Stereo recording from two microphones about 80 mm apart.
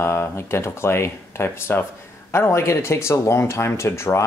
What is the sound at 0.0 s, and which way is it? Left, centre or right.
Speech, left.